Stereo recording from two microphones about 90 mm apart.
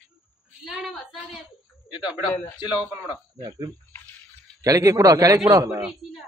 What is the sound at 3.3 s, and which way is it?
Speech, 50° right (ahead or behind).